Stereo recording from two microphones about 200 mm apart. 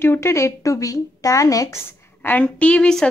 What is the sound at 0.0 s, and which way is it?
A woman's voice, 10° left (ahead or behind).